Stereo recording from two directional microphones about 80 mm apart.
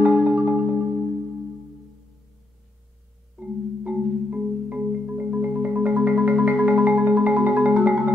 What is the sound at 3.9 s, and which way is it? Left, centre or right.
Marimba, centre.